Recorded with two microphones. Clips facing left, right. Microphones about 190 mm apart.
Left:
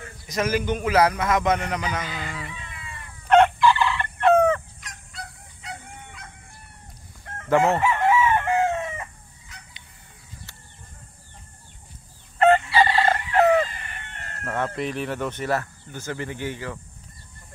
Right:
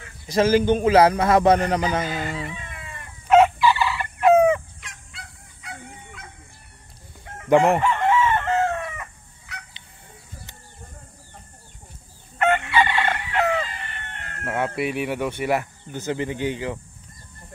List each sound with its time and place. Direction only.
0.3 s a man's voice: 30° right (ahead or behind)
2.0 s speech: 45° right (ahead or behind)
3.3 s crowing: 5° right (ahead or behind)
5.1 s goose: 40° left (ahead or behind)
7.4 s speech: 15° right (ahead or behind)
7.8 s chicken: 10° left (ahead or behind)
9.5 s cat: 70° right (ahead or behind)
12.4 s chicken: 35° left (ahead or behind)
14.4 s speech: 10° right (ahead or behind)